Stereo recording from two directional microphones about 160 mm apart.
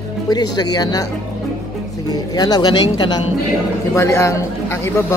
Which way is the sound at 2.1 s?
25° left (ahead or behind).